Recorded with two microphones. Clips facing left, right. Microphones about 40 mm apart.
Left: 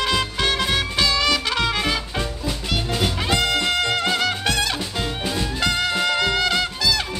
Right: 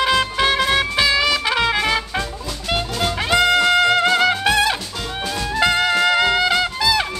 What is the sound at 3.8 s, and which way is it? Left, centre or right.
Music, centre.